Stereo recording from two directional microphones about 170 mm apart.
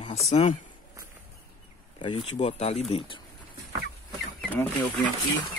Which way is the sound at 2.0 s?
35° left (ahead or behind).